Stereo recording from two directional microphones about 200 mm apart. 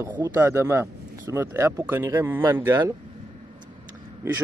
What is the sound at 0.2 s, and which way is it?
Speech, 15° right (ahead or behind).